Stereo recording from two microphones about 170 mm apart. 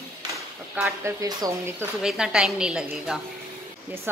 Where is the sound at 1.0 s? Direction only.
20° right (ahead or behind).